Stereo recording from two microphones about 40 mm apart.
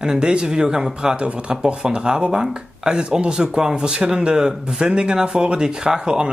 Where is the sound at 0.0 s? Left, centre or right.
Centre.